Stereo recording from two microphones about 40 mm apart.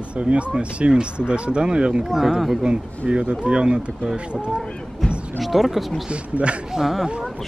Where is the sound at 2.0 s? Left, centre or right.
Centre.